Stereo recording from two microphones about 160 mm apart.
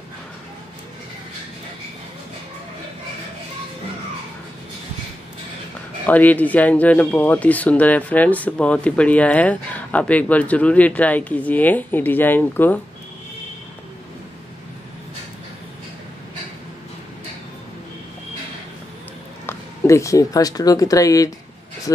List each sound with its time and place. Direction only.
6.0 s speech: 10° left (ahead or behind)
19.4 s speech: 15° left (ahead or behind)